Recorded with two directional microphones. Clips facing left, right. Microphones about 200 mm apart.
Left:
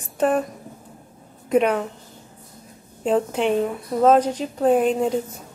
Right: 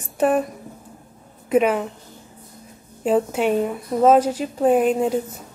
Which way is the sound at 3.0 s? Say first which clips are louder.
Right 1 dB; 5° right (ahead or behind).